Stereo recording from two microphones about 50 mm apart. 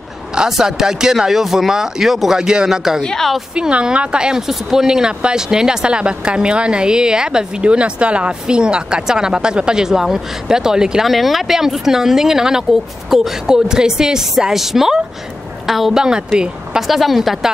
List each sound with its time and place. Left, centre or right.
0.5 s speech: centre
3.0 s a woman's voice: centre
3.5 s speech: centre
11.1 s a woman's voice: centre
16.0 s speech: centre
16.8 s a woman's voice: centre